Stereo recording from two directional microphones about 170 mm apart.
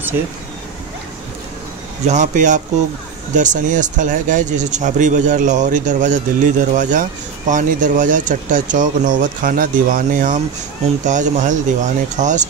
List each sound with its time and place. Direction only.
2.0 s speech: 45° right (ahead or behind)